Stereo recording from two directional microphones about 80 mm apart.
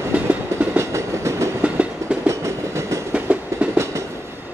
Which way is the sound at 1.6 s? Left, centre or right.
Centre.